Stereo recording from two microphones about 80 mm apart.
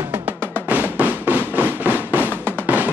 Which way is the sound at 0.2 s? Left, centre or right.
Right.